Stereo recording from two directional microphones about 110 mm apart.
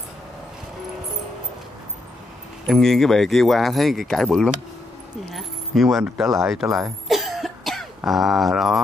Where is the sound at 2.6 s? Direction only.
Centre (ahead or behind).